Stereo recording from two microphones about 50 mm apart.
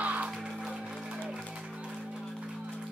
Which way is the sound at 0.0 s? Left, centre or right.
Right.